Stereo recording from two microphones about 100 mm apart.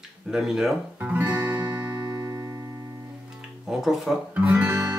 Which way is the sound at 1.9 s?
40° right (ahead or behind).